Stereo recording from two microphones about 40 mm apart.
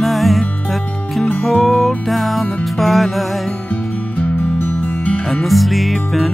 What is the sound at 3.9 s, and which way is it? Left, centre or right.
Music, left.